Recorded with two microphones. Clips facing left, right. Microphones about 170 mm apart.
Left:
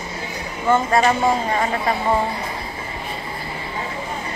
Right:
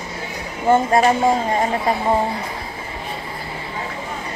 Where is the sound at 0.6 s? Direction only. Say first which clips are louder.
Right 2 dB; 45° right (ahead or behind).